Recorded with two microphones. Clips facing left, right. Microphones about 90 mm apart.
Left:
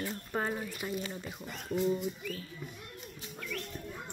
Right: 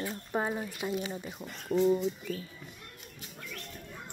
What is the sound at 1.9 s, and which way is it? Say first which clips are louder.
Speech: right 4 dB; 25° right (ahead or behind).